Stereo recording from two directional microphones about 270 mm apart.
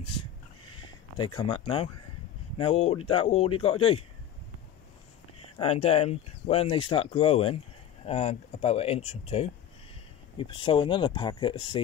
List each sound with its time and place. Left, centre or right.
1.1 s speech: centre
5.6 s speech: left